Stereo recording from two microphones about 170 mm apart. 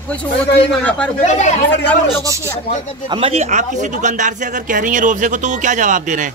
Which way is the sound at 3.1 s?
35° right (ahead or behind).